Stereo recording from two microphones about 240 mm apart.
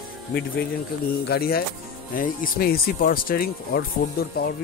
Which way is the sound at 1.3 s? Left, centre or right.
Left.